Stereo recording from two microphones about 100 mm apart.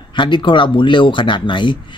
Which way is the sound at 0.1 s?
50° left (ahead or behind).